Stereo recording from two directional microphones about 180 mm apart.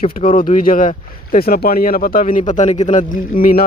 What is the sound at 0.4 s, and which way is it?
Speech, 50° left (ahead or behind).